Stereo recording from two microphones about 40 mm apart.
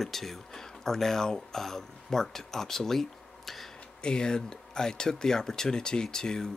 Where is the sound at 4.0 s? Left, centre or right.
Left.